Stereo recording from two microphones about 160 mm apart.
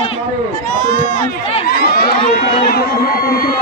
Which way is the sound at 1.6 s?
70° left (ahead or behind).